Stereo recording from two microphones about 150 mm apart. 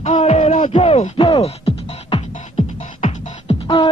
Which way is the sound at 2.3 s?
50° left (ahead or behind).